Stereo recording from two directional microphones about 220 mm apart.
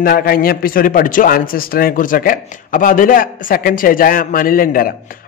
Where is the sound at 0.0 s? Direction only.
40° left (ahead or behind).